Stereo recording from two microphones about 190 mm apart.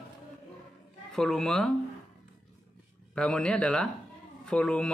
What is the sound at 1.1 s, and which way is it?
Speech, centre (ahead or behind).